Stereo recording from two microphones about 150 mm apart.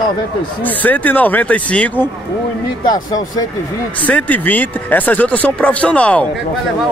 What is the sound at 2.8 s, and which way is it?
Speech, 25° left (ahead or behind).